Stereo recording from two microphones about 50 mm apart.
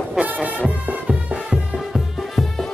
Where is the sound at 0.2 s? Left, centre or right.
Right.